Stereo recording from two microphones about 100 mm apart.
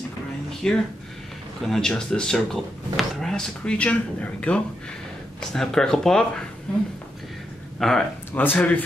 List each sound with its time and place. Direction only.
0.5 s a sound: 5° left (ahead or behind)
1.7 s speech: 5° left (ahead or behind)
8.3 s speech: 20° left (ahead or behind)